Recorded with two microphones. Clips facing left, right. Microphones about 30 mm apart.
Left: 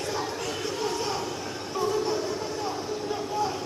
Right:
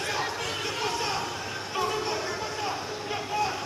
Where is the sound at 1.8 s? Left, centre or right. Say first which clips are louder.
Left 2 dB; right.